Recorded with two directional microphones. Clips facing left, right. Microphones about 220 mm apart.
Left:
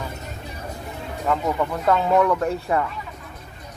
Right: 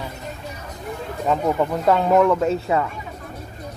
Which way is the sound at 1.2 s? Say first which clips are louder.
Right 3 dB; 15° right (ahead or behind).